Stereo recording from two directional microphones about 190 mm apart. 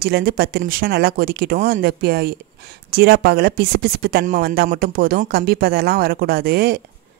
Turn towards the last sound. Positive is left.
turn(degrees=-55)  # may be behind; listen again after turning